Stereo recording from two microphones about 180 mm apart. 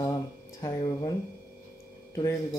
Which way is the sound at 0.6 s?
20° left (ahead or behind).